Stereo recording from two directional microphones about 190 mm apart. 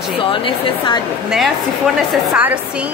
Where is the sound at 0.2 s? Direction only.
25° left (ahead or behind).